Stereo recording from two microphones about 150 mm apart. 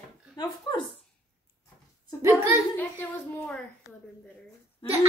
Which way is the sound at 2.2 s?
15° right (ahead or behind).